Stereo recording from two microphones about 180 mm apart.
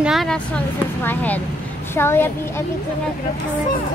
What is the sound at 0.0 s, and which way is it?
Speech, centre (ahead or behind).